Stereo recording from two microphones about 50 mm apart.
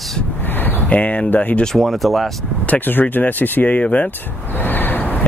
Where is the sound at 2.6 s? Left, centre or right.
Left.